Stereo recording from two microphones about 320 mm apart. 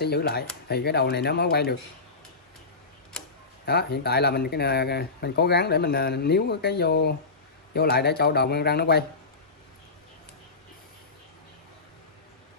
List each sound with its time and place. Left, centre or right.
0.0 s speech: left
3.6 s speech: left